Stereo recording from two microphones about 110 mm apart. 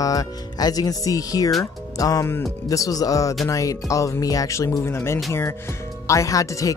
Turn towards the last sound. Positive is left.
turn(degrees=30)  # may be behind; listen again after turning